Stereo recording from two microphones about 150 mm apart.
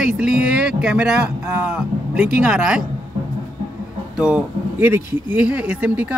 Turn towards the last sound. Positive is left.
turn(degrees=-10)  # may be behind; listen again after turning